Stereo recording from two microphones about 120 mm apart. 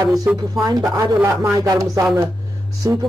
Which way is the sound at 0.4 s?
30° right (ahead or behind).